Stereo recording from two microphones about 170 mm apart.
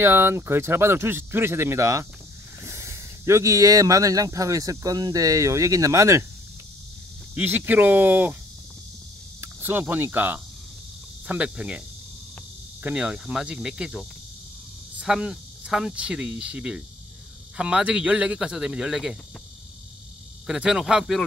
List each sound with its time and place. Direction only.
0.0 s speech: 15° right (ahead or behind)
7.3 s speech: 10° right (ahead or behind)
9.4 s speech: 10° right (ahead or behind)
12.8 s speech: 5° right (ahead or behind)
20.4 s speech: 5° right (ahead or behind)